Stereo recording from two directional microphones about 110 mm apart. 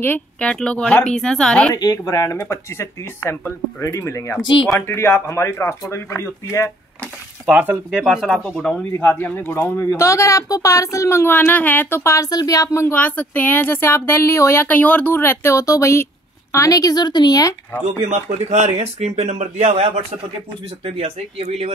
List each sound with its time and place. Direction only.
0.0 s speech: 15° left (ahead or behind)
1.7 s speech: 35° left (ahead or behind)
7.4 s speech: 10° right (ahead or behind)
8.9 s speech: 15° left (ahead or behind); by 17.6 s 35° left (ahead or behind)
18.0 s speech: 90° right